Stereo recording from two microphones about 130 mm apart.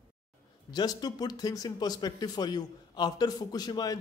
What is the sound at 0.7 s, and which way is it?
Speech, 30° left (ahead or behind).